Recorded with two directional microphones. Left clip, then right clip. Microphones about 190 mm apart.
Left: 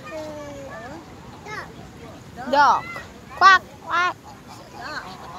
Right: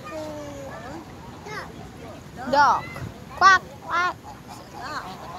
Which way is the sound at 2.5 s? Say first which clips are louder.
Left 2 dB; 15° left (ahead or behind).